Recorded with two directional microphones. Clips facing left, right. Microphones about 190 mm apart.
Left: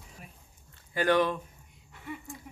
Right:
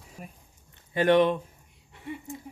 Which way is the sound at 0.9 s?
25° right (ahead or behind).